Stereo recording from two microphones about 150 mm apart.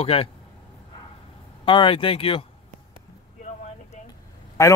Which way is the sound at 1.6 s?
35° left (ahead or behind).